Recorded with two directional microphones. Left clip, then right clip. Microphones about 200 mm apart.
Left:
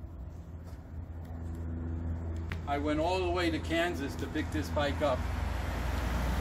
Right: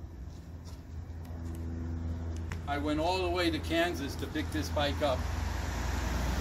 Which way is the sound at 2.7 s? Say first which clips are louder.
Even; 20° left (ahead or behind).